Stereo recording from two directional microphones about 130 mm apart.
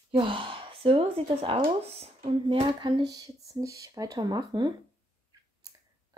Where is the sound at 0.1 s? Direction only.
40° right (ahead or behind).